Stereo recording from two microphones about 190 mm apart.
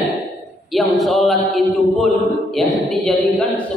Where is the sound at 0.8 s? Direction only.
Centre (ahead or behind).